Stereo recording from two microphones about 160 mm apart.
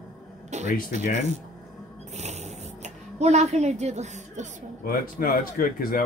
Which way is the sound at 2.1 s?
45° right (ahead or behind).